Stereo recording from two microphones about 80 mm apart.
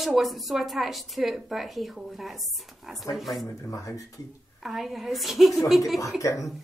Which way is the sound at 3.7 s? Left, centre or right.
Left.